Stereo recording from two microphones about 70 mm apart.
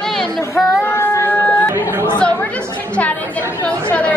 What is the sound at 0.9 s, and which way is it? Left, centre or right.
Music, left.